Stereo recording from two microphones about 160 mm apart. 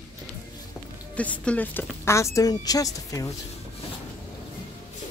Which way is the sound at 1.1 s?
10° left (ahead or behind).